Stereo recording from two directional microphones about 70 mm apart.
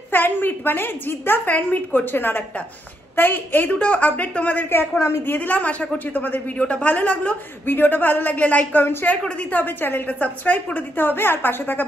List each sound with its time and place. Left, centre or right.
0.1 s a woman's voice: left
3.7 s a woman's voice: centre
4.9 s a woman's voice: left
5.2 s a woman's voice: left
8.8 s a woman's voice: left